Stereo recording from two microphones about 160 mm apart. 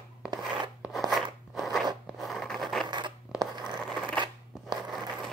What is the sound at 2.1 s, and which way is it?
Zipper, centre (ahead or behind).